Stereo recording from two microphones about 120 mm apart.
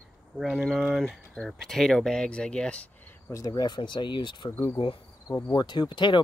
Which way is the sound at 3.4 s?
35° left (ahead or behind).